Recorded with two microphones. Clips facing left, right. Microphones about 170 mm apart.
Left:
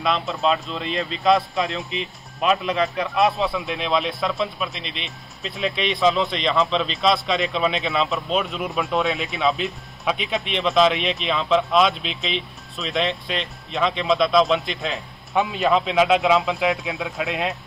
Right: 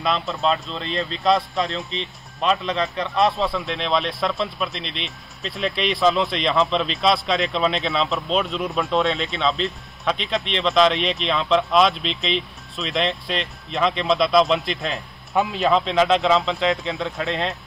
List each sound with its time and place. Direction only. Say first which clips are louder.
0.0 s speech: even; centre (ahead or behind)
16.8 s speech: right 2 dB; 15° left (ahead or behind)